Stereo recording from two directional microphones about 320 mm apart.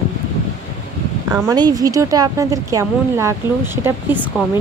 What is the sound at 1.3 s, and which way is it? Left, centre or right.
A woman's voice, centre.